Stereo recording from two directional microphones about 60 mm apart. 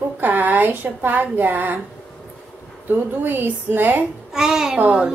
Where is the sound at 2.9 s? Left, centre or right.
Right.